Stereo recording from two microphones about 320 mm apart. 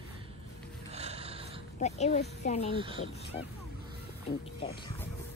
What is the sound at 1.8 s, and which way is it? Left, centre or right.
Speech, left.